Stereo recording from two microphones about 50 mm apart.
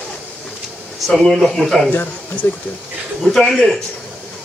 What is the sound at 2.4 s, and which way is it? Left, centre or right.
Speech, left.